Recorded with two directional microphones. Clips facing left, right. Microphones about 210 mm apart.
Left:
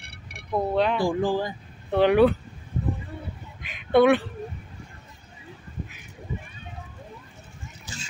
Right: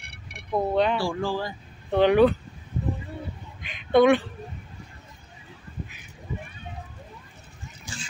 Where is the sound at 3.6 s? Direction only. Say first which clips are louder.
Even; 5° left (ahead or behind).